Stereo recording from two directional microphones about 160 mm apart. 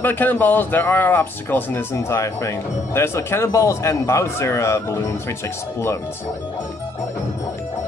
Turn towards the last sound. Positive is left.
turn(degrees=20)  # may be behind; listen again after turning